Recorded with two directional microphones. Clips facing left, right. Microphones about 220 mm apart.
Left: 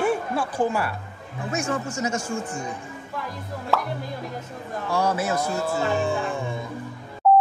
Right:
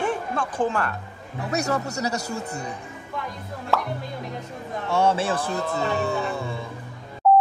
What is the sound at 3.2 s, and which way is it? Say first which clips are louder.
Speech: left 1 dB; centre (ahead or behind).